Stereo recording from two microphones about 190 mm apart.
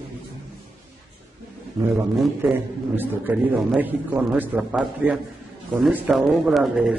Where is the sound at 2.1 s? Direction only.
Centre (ahead or behind).